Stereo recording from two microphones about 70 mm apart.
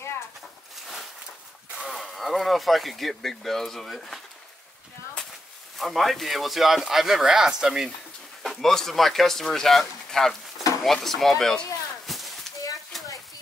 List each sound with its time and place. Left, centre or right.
1.9 s speech: centre
5.8 s speech: centre
8.4 s speech: centre
12.1 s a sound: centre